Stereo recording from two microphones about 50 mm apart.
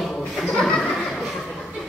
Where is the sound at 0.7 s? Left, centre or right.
Centre.